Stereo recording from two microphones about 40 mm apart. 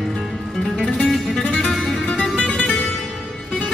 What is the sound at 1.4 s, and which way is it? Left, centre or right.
Music, left.